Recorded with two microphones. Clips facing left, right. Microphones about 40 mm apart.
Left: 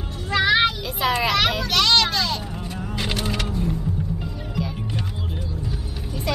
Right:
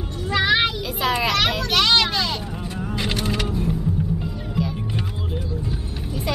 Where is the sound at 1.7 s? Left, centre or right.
Centre.